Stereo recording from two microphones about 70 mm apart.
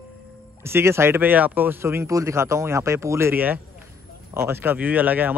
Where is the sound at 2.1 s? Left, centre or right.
Right.